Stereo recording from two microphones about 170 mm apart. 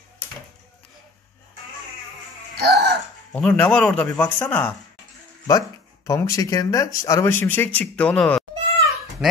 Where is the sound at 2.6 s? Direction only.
75° right (ahead or behind).